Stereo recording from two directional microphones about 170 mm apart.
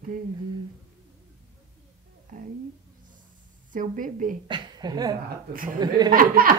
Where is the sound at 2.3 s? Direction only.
50° right (ahead or behind).